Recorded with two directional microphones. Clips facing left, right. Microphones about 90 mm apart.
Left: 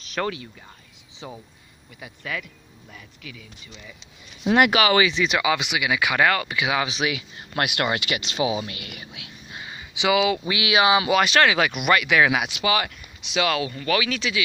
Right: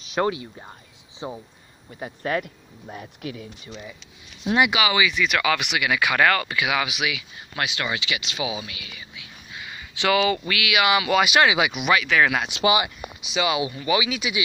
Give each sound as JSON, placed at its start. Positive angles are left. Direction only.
{"t": 0.1, "sound": "speech", "side_deg": -20}
{"t": 2.0, "sound": "speech", "side_deg": -40}
{"t": 4.6, "sound": "speech", "side_deg": 45}
{"t": 5.1, "sound": "speech", "side_deg": 25}
{"t": 5.4, "sound": "speech", "side_deg": 15}
{"t": 8.2, "sound": "speech", "side_deg": 35}
{"t": 8.8, "sound": "speech", "side_deg": 60}
{"t": 9.7, "sound": "a sound", "side_deg": 20}
{"t": 10.6, "sound": "speech", "side_deg": 30}
{"t": 11.1, "sound": "speech", "side_deg": -10}
{"t": 11.8, "sound": "speech", "side_deg": 0}
{"t": 12.4, "sound": "speech", "side_deg": -20}
{"t": 13.2, "sound": "speech", "side_deg": -5}